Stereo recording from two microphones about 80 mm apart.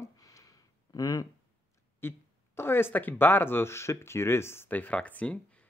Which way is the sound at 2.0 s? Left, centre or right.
Left.